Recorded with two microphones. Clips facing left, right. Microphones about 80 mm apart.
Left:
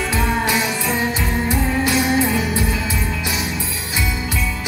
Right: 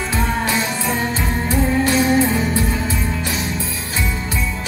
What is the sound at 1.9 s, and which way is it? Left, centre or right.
Music, centre.